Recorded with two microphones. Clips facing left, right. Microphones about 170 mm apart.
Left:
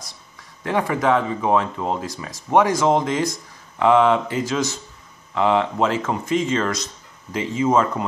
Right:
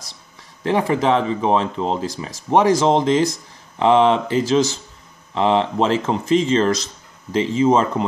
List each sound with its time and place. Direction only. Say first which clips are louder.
0.7 s speech: right 2 dB; 25° right (ahead or behind)